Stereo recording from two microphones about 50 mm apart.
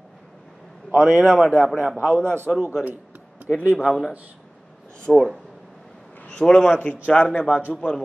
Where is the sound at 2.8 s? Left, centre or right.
Right.